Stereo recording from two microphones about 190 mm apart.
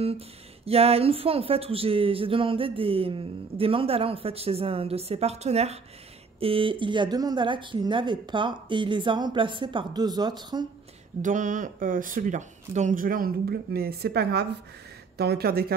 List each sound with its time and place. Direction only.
0.7 s speech: 30° right (ahead or behind)
11.1 s speech: 40° right (ahead or behind)